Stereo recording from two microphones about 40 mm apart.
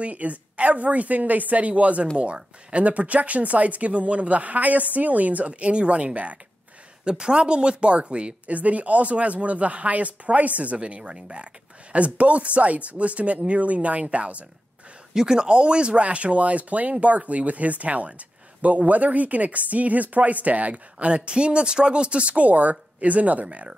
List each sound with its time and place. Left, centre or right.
0.0 s speech: right
5.5 s speech: right
7.1 s speech: right
11.0 s speech: right
11.9 s speech: right
15.1 s speech: centre; by 23.7 s right